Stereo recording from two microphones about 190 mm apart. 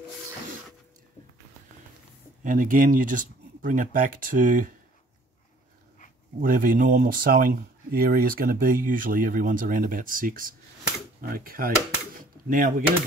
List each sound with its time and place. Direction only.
2.4 s speech: 45° right (ahead or behind)
6.4 s speech: 45° right (ahead or behind)